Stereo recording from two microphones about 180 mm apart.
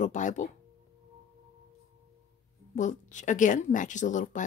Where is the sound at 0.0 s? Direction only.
45° left (ahead or behind).